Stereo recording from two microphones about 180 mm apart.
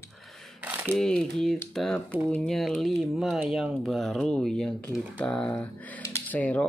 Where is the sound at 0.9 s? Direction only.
5° left (ahead or behind).